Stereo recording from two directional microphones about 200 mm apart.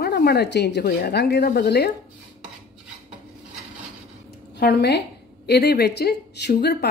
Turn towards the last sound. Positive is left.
turn(degrees=55)  # may be behind; listen again after turning